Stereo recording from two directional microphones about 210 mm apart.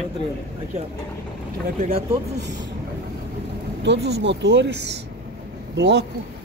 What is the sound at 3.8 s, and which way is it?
Speech, 55° right (ahead or behind).